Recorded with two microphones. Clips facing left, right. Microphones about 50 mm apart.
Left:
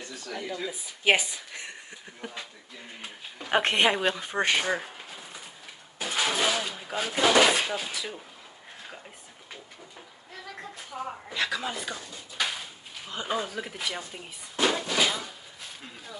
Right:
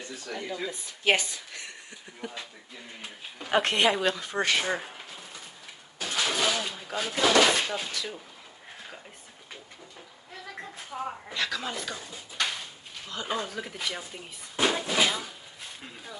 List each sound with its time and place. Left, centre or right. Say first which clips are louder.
0.3 s speech: even; centre
2.2 s speech: right 1 dB; left
3.0 s speech: even; centre
3.5 s speech: even; left
4.6 s speech: left 1 dB; centre
5.9 s speech: left 1 dB; centre
10.5 s a sound: right 1 dB; centre
11.4 s speech: left 2 dB; centre
12.4 s a sound: even; centre
13.3 s speech: left 2 dB; centre
14.6 s a sound: even; centre